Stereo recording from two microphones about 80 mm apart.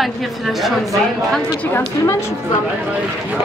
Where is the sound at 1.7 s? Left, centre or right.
Left.